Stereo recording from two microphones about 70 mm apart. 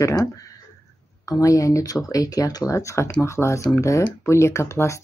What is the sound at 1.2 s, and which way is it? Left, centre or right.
Speech, left.